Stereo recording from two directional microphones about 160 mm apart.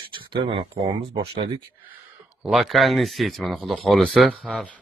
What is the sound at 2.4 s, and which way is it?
Speech, centre (ahead or behind).